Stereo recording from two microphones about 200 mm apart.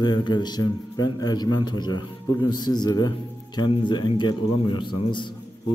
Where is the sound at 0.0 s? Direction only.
20° left (ahead or behind).